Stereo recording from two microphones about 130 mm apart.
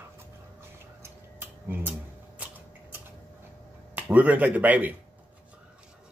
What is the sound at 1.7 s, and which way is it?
Tick-tock, 15° right (ahead or behind).